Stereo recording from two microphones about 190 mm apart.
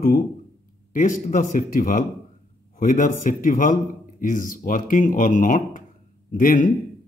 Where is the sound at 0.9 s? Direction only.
45° left (ahead or behind).